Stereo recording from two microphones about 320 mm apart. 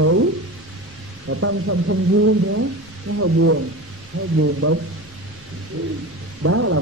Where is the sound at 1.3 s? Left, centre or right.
Right.